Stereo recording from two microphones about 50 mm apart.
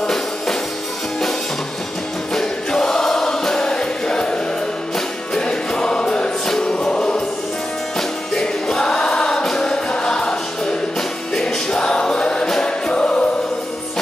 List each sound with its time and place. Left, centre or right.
0.0 s music: centre
2.3 s choir: centre
5.4 s choir: centre
6.4 s music: centre
8.4 s music: centre